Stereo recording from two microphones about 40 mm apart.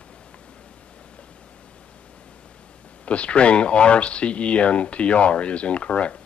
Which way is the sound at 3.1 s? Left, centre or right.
Left.